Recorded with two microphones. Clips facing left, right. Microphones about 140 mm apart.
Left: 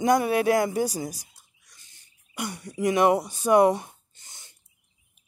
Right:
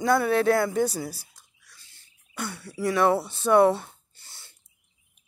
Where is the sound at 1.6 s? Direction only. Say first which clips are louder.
Right 2 dB; 15° left (ahead or behind).